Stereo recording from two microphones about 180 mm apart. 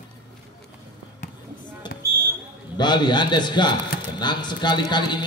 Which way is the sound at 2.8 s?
25° left (ahead or behind).